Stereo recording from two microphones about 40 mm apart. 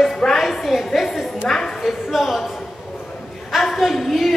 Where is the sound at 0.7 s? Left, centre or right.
Centre.